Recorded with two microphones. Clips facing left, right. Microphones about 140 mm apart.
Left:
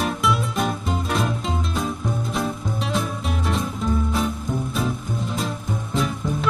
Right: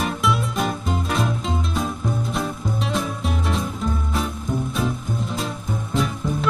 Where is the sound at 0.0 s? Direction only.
Centre (ahead or behind).